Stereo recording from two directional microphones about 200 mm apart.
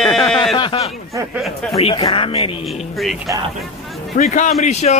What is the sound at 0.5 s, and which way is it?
Speech, 25° left (ahead or behind).